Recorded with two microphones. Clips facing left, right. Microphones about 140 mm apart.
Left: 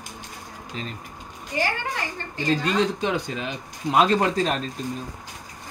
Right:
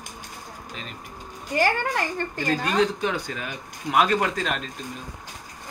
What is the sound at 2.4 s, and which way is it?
Speech, 25° left (ahead or behind).